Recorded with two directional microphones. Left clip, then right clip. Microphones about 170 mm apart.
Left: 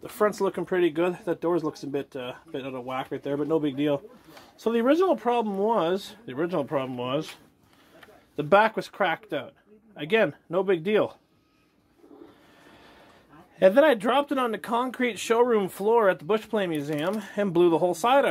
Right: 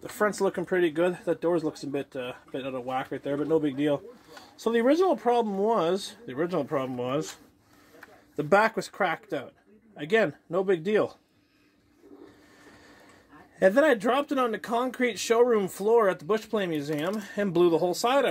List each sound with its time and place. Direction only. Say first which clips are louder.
0.0 s speech: left 1 dB; 10° left (ahead or behind)
8.4 s speech: left 2 dB; 10° left (ahead or behind)
13.6 s speech: left 3 dB; 15° left (ahead or behind)